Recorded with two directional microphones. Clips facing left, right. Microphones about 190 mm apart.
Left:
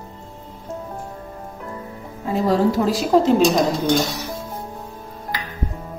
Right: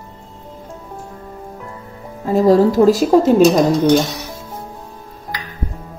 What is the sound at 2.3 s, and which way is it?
A woman's voice, 40° right (ahead or behind).